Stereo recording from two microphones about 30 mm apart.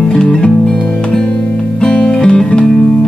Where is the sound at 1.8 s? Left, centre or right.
Left.